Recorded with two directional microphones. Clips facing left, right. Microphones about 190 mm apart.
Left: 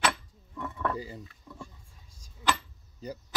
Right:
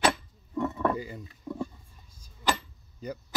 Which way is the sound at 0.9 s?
35° left (ahead or behind).